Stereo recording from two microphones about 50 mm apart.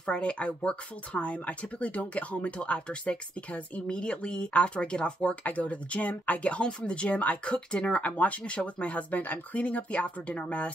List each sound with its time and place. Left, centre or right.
0.0 s speech: left